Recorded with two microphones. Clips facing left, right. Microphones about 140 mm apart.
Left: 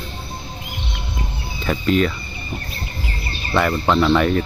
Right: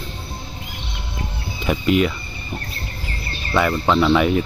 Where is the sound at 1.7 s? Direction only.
10° right (ahead or behind).